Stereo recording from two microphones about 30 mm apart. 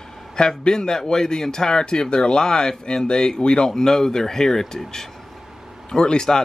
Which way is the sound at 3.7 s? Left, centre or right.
Centre.